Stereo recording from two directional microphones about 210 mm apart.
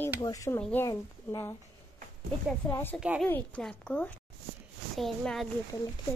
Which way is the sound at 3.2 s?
10° left (ahead or behind).